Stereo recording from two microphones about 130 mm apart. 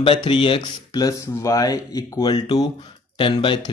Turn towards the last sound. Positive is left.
turn(degrees=40)  # may be behind; listen again after turning